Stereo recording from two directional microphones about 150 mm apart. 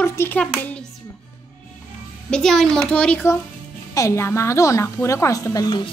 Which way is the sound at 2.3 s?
5° left (ahead or behind).